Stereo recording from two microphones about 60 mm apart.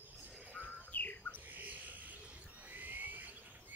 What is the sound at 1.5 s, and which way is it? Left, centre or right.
Bird, right.